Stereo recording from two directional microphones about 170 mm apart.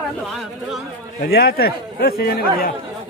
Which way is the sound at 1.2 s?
70° left (ahead or behind).